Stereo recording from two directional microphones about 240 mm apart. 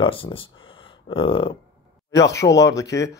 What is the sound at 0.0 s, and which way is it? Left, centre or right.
Speech, left.